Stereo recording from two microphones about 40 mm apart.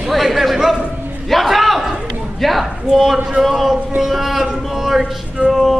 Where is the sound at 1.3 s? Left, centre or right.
Centre.